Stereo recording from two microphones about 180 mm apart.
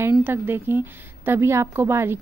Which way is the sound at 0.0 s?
10° right (ahead or behind).